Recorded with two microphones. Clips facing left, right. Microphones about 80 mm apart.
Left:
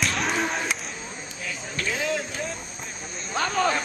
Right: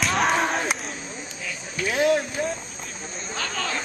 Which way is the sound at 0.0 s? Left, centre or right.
Centre.